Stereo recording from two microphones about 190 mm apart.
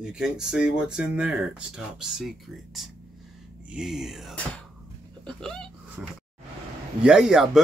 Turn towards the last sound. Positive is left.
turn(degrees=-5)  # may be behind; listen again after turning